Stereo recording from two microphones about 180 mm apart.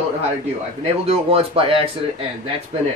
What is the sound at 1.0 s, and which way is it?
Speech, 35° right (ahead or behind).